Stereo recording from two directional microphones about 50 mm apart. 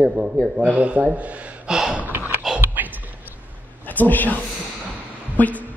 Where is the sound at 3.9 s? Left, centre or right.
Left.